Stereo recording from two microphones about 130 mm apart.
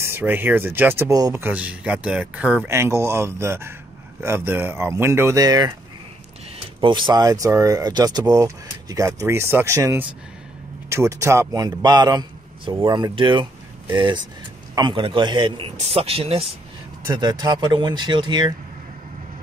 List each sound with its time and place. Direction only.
0.0 s speech: 15° right (ahead or behind)
1.4 s speech: 10° right (ahead or behind); by 5.8 s 30° right (ahead or behind)
6.8 s a man's voice: 35° right (ahead or behind)
17.1 s a man's voice: 35° right (ahead or behind)